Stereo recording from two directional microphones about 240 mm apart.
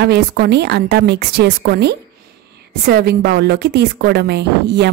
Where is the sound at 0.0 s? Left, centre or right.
Right.